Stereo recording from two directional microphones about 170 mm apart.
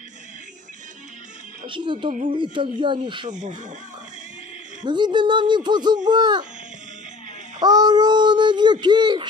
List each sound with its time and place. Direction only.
1.7 s speech: 30° right (ahead or behind)
2.0 s speech: 50° right (ahead or behind)
2.5 s speech: 30° right (ahead or behind)
3.3 s speech: 45° right (ahead or behind)
4.8 s speech: 25° right (ahead or behind)
7.6 s speech: 25° right (ahead or behind)